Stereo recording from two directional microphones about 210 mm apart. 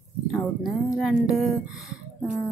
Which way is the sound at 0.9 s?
Centre (ahead or behind).